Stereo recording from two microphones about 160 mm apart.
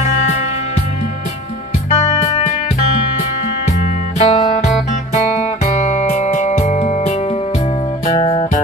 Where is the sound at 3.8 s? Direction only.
45° left (ahead or behind).